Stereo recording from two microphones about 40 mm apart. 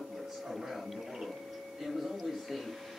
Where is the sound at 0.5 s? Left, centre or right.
Centre.